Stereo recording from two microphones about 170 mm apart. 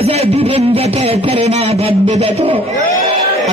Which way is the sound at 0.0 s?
35° right (ahead or behind).